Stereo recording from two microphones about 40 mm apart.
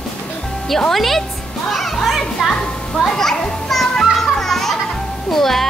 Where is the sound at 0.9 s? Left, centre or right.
Centre.